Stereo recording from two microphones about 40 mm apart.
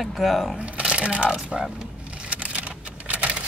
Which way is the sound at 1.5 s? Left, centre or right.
Right.